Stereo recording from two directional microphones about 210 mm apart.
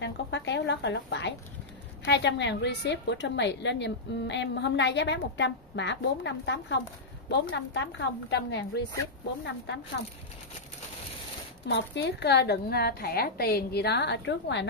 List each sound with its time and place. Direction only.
0.0 s a sound: 55° left (ahead or behind)
2.0 s a woman's voice: 55° left (ahead or behind)
11.6 s a woman's voice: 55° left (ahead or behind)